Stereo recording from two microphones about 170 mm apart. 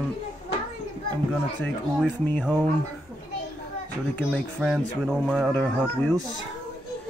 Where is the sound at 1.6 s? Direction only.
10° left (ahead or behind).